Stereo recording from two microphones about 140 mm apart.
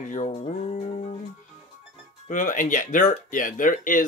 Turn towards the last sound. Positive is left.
turn(degrees=70)  # may be behind; listen again after turning